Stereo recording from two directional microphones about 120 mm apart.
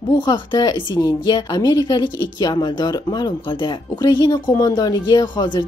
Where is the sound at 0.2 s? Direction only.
35° left (ahead or behind).